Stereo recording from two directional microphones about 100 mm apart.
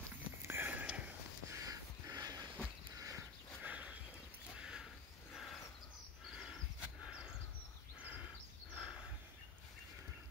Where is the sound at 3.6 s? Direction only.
15° right (ahead or behind).